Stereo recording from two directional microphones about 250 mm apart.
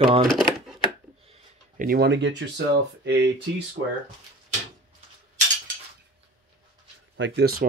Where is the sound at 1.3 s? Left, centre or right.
Right.